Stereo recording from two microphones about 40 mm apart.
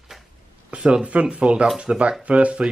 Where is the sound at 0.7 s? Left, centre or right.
Right.